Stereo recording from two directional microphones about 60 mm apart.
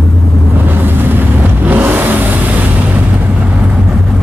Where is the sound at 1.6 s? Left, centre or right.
Right.